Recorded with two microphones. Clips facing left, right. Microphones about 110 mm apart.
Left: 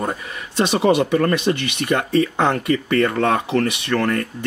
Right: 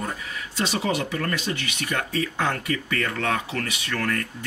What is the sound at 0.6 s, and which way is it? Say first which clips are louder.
Speech: left 9 dB; 60° left (ahead or behind).